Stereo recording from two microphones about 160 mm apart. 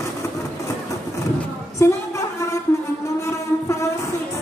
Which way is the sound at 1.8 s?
15° left (ahead or behind).